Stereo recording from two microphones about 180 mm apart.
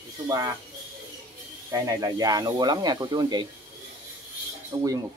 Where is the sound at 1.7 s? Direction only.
20° right (ahead or behind).